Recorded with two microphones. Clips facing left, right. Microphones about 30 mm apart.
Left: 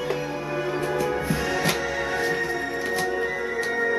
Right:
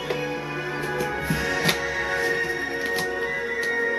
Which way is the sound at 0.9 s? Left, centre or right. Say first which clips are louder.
Left 1 dB; centre.